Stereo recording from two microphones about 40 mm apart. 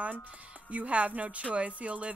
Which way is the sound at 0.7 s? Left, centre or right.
Right.